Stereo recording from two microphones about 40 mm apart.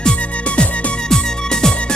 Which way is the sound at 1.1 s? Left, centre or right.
Centre.